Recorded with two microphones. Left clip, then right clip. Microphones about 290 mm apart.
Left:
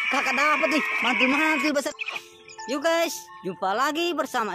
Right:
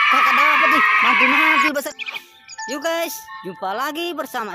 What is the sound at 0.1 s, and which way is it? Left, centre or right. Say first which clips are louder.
Speech: right 8 dB; centre.